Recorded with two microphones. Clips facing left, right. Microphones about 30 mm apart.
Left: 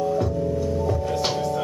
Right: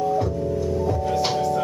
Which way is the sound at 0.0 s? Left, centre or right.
Centre.